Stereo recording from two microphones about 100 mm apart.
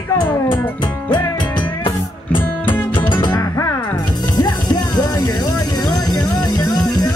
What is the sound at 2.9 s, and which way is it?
Music, 50° left (ahead or behind).